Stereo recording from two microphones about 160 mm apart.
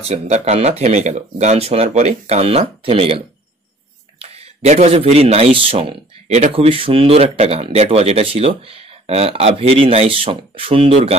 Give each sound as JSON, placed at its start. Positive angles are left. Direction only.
{"t": 0.0, "sound": "speech", "side_deg": -40}